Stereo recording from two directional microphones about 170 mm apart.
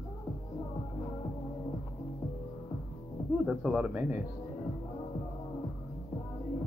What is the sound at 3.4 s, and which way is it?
Speech, 5° right (ahead or behind).